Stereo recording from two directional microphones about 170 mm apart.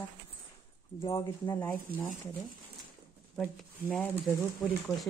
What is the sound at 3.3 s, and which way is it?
Speech, 5° left (ahead or behind).